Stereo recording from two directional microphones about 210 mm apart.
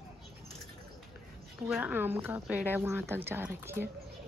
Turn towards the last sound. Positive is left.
turn(degrees=-10)  # may be behind; listen again after turning